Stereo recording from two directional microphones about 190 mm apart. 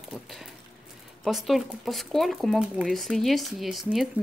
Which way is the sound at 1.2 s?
Centre (ahead or behind).